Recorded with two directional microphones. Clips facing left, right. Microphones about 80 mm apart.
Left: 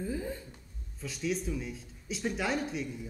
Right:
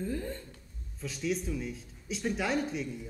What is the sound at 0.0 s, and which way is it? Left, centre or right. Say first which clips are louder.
A woman's voice: even; centre.